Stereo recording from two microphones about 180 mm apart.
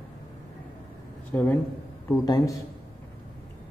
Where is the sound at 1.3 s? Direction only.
10° left (ahead or behind).